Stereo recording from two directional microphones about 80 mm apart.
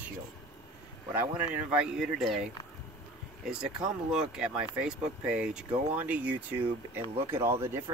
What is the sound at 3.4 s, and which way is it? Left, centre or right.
Speech, centre.